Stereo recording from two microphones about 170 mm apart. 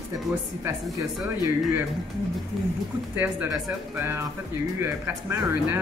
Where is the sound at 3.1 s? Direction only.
10° right (ahead or behind).